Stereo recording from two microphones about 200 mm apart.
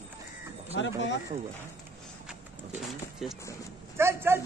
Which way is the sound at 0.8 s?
65° left (ahead or behind).